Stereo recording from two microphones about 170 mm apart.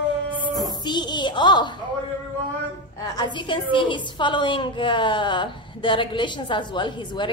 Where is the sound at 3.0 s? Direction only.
25° left (ahead or behind).